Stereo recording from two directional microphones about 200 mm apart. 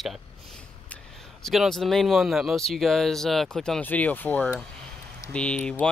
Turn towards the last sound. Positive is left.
turn(degrees=5)  # may be behind; listen again after turning